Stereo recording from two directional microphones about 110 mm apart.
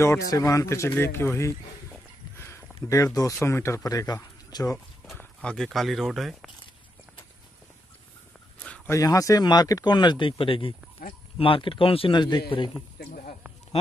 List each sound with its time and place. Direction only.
0.0 s speech: 30° left (ahead or behind)
2.3 s a sound: 25° left (ahead or behind)
3.4 s speech: 25° left (ahead or behind)
5.1 s speech: 10° left (ahead or behind)
8.8 s speech: 30° left (ahead or behind); by 12.2 s 55° left (ahead or behind)
12.2 s speech: 45° left (ahead or behind)